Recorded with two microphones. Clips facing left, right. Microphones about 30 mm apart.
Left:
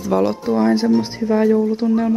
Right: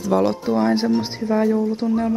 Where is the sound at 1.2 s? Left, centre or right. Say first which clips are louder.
Left 3 dB; centre.